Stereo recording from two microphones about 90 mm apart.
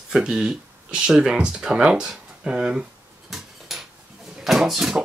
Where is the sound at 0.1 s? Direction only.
5° right (ahead or behind).